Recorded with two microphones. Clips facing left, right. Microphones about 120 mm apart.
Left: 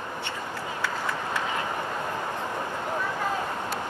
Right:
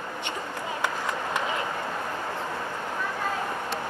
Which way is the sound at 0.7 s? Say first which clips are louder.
Right 1 dB; 15° right (ahead or behind).